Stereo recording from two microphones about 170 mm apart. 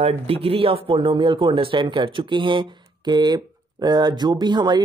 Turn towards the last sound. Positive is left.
turn(degrees=-25)  # may be behind; listen again after turning